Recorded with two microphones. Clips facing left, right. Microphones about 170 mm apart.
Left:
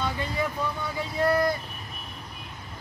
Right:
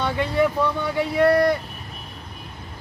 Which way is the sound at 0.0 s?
70° right (ahead or behind).